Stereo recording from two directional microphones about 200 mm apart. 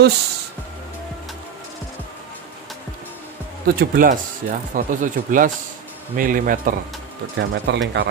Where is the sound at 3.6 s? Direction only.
50° right (ahead or behind).